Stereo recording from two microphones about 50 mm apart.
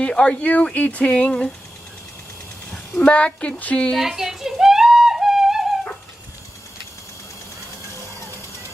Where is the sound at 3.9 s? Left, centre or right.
Centre.